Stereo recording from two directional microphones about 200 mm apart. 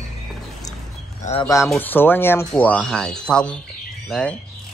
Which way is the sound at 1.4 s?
15° left (ahead or behind).